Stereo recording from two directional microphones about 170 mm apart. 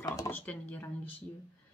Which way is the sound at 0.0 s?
15° left (ahead or behind).